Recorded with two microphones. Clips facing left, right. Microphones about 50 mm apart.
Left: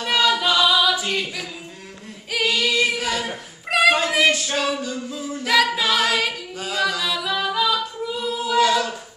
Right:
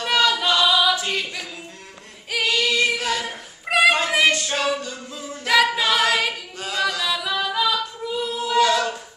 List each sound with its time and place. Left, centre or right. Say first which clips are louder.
0.0 s singing: even; centre
2.3 s child singing: even; centre